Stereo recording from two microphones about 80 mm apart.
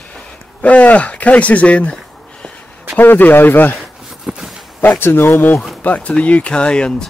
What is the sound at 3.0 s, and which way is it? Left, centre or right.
Speech, left.